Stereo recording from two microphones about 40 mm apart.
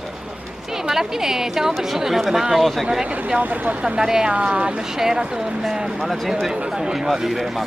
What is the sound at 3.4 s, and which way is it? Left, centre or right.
Speech, right.